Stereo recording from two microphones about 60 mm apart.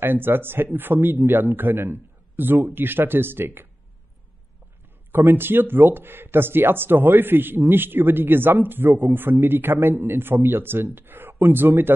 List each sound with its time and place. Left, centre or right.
0.0 s speech: right
5.1 s speech: right